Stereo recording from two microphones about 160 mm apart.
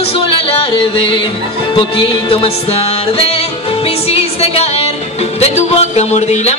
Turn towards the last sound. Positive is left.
turn(degrees=45)  # may be behind; listen again after turning